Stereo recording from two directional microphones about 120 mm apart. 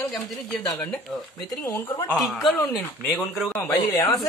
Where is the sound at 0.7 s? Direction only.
10° left (ahead or behind).